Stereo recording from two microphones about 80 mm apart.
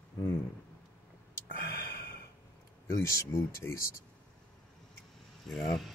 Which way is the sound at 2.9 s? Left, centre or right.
Left.